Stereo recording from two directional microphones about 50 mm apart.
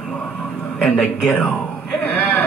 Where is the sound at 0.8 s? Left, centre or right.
Left.